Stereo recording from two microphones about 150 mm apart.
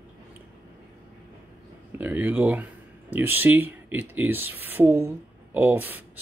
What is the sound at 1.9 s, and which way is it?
Speech, 10° right (ahead or behind).